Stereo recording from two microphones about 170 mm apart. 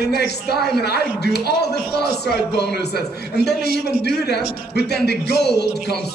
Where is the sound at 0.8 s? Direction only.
75° left (ahead or behind).